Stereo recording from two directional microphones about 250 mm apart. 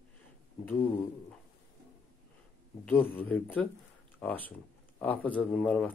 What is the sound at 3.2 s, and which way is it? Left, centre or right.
Speech, centre.